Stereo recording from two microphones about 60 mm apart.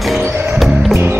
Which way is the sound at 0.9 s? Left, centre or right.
Right.